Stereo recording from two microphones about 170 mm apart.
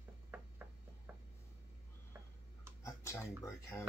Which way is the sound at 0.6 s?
10° right (ahead or behind).